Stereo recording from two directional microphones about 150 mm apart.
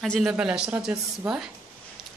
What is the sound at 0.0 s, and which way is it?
A woman's voice, centre (ahead or behind).